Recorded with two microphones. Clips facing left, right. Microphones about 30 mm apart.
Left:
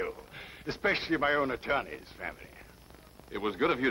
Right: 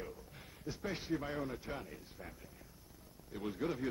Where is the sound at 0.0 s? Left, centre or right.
Left.